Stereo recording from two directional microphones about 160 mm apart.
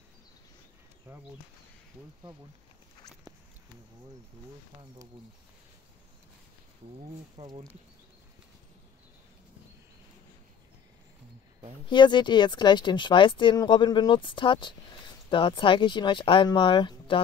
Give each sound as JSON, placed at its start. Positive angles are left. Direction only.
{"t": 7.3, "sound": "speech", "side_deg": -35}
{"t": 11.9, "sound": "speech", "side_deg": 30}